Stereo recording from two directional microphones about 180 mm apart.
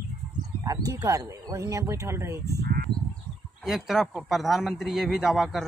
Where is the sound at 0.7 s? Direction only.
20° right (ahead or behind).